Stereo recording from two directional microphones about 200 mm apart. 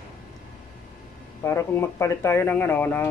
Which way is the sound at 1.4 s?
10° left (ahead or behind).